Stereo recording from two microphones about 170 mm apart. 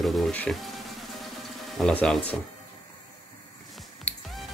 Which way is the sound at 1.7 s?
5° left (ahead or behind).